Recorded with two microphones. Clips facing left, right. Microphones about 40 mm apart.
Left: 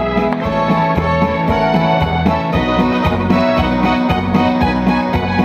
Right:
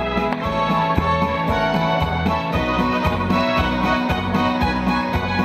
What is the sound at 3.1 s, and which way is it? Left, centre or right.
Music, left.